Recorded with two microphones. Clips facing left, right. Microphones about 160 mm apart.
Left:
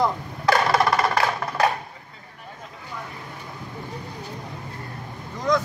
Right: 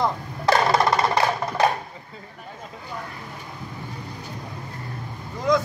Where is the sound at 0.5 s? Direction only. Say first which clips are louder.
Right 1 dB; 25° right (ahead or behind).